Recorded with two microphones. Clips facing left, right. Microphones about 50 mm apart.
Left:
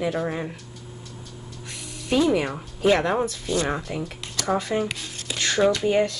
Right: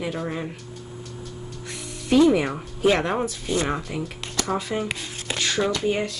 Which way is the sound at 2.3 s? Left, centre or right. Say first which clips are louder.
Right 2 dB; centre.